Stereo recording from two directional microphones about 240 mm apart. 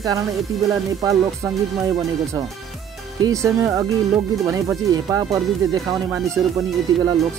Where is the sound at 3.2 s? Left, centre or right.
Centre.